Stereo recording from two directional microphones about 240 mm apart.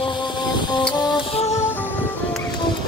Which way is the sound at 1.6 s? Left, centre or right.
Centre.